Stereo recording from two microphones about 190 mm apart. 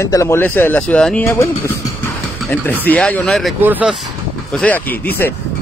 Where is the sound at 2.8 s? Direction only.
10° left (ahead or behind).